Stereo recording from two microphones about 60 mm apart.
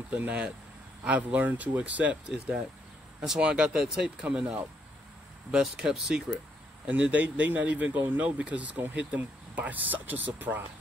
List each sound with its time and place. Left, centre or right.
0.1 s speech: right
5.5 s speech: centre
7.0 s speech: right